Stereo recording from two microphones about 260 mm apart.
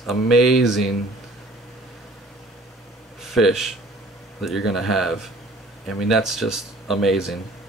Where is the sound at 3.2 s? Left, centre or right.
Centre.